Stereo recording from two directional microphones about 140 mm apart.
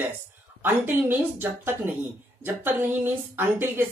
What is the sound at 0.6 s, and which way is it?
A woman's voice, 15° right (ahead or behind).